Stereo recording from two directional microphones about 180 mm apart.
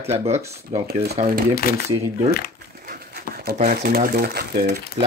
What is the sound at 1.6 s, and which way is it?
Speech, 55° left (ahead or behind).